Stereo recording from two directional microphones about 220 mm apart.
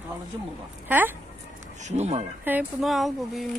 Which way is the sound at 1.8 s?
30° right (ahead or behind).